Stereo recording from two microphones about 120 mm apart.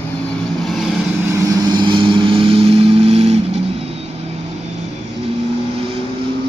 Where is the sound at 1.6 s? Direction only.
40° right (ahead or behind); by 3.3 s 60° right (ahead or behind).